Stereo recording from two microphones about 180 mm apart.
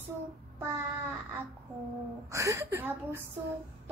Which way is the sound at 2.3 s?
15° right (ahead or behind).